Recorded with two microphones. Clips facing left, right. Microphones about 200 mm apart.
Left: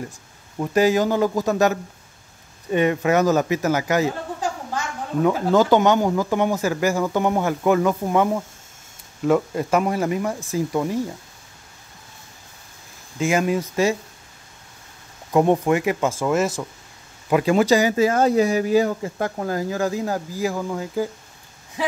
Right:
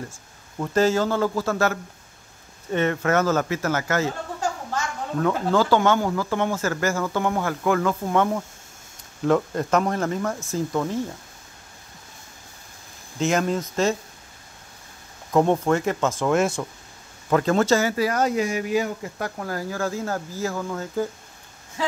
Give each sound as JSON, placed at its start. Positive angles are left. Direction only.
{"t": 0.6, "sound": "speech", "side_deg": 15}
{"t": 5.5, "sound": "speech", "side_deg": 20}
{"t": 13.2, "sound": "speech", "side_deg": 10}
{"t": 15.3, "sound": "speech", "side_deg": 15}